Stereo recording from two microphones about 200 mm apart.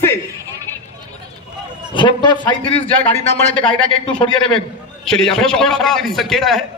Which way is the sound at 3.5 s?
5° left (ahead or behind).